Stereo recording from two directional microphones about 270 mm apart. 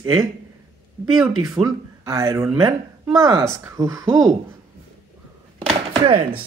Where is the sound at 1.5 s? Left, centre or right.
Centre.